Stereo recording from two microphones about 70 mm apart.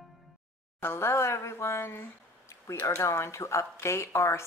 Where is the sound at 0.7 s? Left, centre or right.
Left.